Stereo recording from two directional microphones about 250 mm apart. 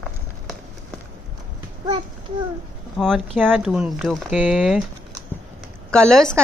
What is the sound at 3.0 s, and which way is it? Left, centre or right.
Speech, centre.